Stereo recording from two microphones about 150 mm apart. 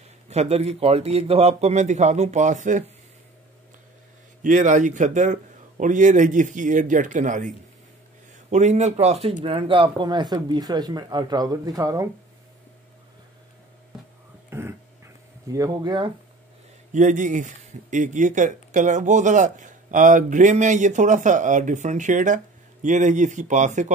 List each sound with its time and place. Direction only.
0.3 s a man's voice: 45° right (ahead or behind)
4.4 s a man's voice: 55° right (ahead or behind); by 12.1 s 20° right (ahead or behind)
14.5 s dog: 15° right (ahead or behind)
15.5 s speech: 25° right (ahead or behind)
16.9 s speech: 55° right (ahead or behind)